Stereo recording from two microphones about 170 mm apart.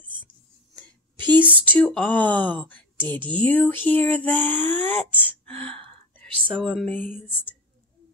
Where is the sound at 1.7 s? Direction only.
10° left (ahead or behind).